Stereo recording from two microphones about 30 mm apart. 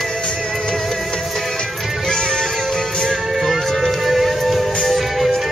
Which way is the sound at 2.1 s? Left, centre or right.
Left.